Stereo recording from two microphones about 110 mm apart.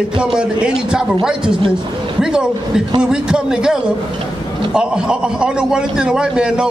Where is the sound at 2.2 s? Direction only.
5° right (ahead or behind).